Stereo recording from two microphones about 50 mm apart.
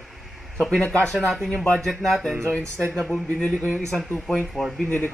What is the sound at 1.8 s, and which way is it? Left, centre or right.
A man's voice, centre.